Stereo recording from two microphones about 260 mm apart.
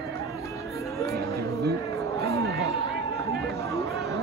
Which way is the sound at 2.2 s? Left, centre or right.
Centre.